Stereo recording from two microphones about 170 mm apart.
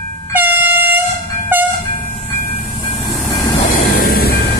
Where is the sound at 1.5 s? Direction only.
10° right (ahead or behind).